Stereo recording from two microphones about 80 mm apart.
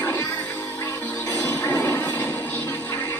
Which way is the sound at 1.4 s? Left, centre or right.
Left.